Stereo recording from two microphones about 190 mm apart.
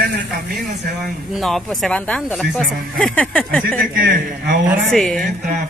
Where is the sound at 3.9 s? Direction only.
50° right (ahead or behind).